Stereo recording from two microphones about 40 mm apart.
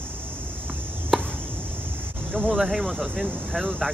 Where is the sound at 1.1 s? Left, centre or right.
Centre.